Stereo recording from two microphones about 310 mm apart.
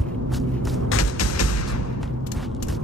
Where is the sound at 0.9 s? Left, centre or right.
Left.